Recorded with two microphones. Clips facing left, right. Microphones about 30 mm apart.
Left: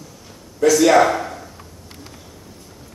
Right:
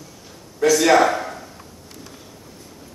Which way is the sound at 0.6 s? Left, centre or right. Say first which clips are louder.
Left 2 dB; centre.